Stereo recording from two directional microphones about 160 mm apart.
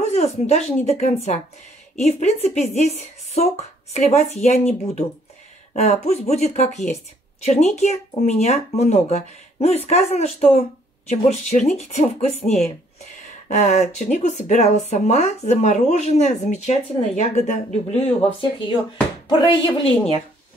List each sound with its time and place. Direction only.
0.1 s a woman's voice: 40° left (ahead or behind)